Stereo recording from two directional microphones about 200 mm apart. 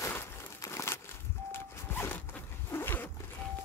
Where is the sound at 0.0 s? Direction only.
15° left (ahead or behind).